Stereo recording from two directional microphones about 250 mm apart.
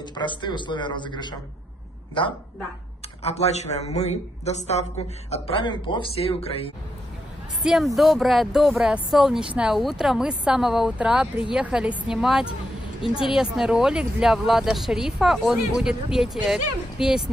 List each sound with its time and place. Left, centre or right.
0.0 s a woman's voice: centre
3.2 s a woman's voice: left
7.6 s speech: centre